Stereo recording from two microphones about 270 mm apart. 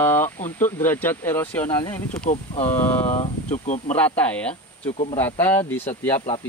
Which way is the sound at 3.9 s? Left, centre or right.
Centre.